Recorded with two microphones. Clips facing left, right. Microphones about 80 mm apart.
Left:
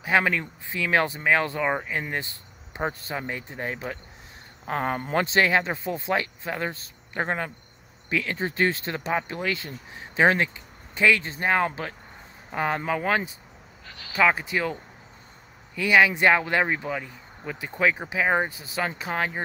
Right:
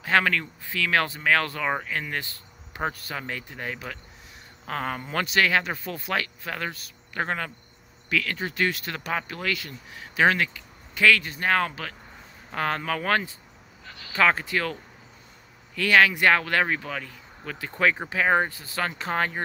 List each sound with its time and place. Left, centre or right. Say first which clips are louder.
0.0 s speech: even; centre
13.8 s speech: even; centre
14.1 s speech: even; centre